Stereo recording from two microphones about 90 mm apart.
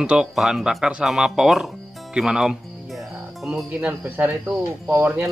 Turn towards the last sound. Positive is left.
turn(degrees=-20)  # may be behind; listen again after turning